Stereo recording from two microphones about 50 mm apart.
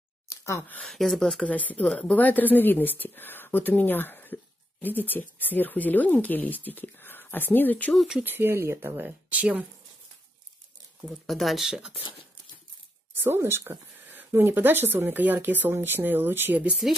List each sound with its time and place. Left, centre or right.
0.3 s sigh: left
0.8 s speech: centre
1.4 s speech: left
1.9 s speech: centre
2.1 s speech: left
8.2 s speech: right
9.3 s speech: right
11.1 s speech: centre
13.3 s speech: right
14.1 s a sound: right
14.5 s speech: right